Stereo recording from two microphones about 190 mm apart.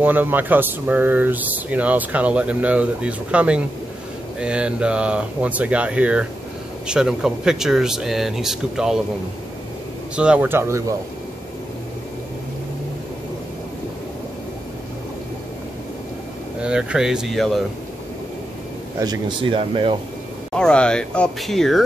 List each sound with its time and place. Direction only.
0.0 s speech: 10° right (ahead or behind)
10.1 s speech: 5° right (ahead or behind)
16.6 s speech: 5° right (ahead or behind)
18.9 s speech: 20° right (ahead or behind)
20.5 s speech: 5° left (ahead or behind)